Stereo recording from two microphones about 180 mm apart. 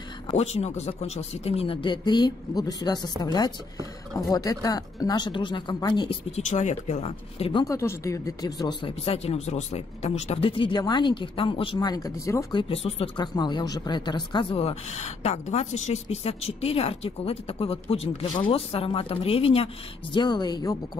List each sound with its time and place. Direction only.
0.3 s speech: 35° left (ahead or behind)
6.3 s speech: 40° left (ahead or behind)
7.6 s speech: 15° left (ahead or behind)
9.0 s speech: 35° left (ahead or behind); by 12.6 s 20° left (ahead or behind)
12.6 s speech: 30° left (ahead or behind)